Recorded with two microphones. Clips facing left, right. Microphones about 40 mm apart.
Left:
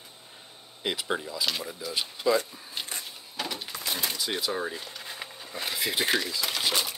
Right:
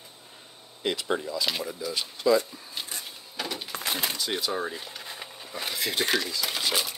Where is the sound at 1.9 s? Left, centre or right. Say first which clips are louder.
Right 2 dB; centre.